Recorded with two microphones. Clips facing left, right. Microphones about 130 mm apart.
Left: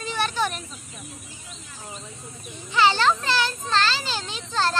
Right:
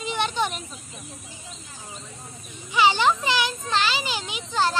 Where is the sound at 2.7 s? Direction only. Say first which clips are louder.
Even; 15° right (ahead or behind).